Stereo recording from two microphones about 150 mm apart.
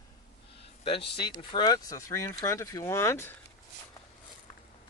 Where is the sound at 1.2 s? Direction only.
30° left (ahead or behind).